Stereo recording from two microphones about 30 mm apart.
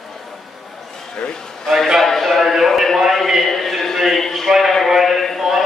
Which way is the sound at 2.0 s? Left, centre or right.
Centre.